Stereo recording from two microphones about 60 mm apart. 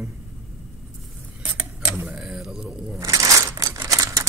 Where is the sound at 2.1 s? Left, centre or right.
Right.